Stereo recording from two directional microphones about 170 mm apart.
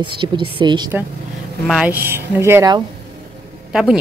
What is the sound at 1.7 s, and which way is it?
Speech, 5° right (ahead or behind).